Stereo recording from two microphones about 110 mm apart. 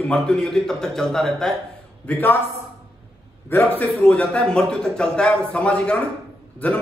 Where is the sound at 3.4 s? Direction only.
20° left (ahead or behind).